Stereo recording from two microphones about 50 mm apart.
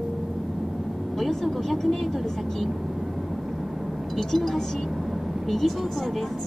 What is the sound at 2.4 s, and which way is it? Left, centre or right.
Vehicle, centre.